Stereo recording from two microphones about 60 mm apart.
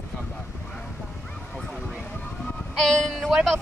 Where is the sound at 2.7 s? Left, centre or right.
Centre.